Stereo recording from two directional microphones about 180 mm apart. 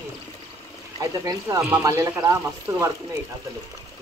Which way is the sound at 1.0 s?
20° right (ahead or behind).